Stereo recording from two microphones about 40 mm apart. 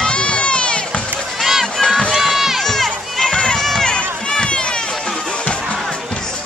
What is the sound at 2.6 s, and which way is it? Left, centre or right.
Run, centre.